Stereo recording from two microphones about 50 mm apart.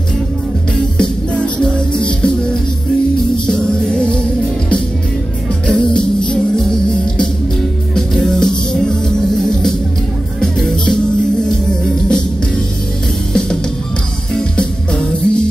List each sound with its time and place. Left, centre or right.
0.9 s music: left
3.4 s music: centre
13.3 s music: centre